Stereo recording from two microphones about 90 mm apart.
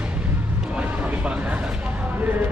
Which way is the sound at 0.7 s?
15° right (ahead or behind).